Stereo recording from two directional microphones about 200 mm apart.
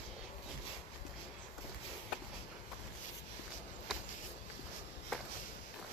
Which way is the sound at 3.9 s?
Centre (ahead or behind).